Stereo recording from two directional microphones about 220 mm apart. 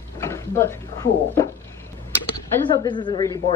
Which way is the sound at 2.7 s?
20° left (ahead or behind).